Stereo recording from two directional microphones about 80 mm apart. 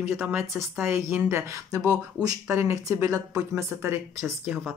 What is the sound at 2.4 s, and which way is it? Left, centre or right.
Speech, right.